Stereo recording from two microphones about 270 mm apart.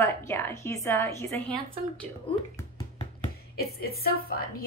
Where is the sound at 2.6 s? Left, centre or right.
Centre.